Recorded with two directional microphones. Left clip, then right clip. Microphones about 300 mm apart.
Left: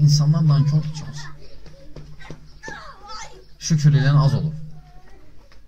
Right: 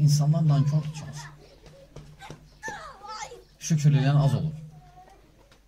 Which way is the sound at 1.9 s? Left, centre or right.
Right.